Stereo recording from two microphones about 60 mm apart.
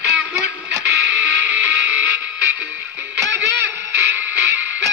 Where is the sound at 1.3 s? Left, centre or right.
Right.